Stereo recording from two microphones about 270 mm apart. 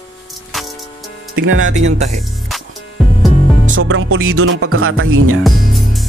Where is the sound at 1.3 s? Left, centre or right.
Right.